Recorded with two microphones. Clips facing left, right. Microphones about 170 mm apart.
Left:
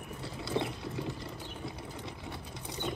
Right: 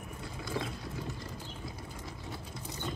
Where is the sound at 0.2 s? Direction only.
30° left (ahead or behind).